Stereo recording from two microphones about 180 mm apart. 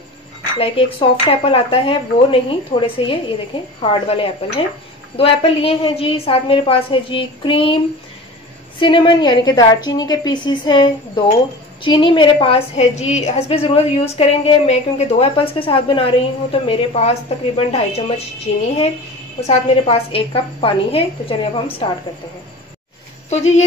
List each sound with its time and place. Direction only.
0.6 s a woman's voice: 30° left (ahead or behind)
8.7 s a woman's voice: 25° left (ahead or behind)
23.3 s a woman's voice: 35° left (ahead or behind)